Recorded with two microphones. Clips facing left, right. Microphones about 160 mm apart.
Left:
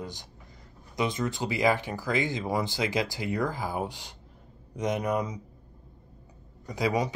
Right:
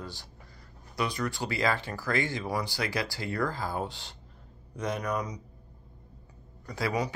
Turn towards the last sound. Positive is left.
turn(degrees=20)  # may be behind; listen again after turning